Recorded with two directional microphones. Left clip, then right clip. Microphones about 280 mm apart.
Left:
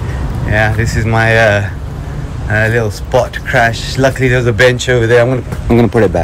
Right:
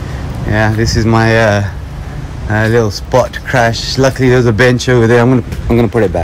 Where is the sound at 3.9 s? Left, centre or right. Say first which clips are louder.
Right 1 dB; centre.